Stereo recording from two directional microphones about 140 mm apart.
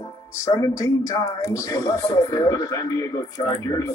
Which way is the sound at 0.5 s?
20° left (ahead or behind).